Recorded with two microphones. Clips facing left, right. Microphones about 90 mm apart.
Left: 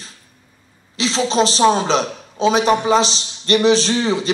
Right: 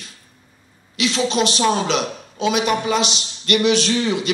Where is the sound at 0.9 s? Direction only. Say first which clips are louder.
Left 2 dB; 30° left (ahead or behind).